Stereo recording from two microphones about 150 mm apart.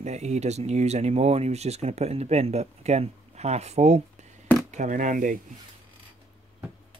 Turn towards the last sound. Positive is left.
turn(degrees=-60)  # may be behind; listen again after turning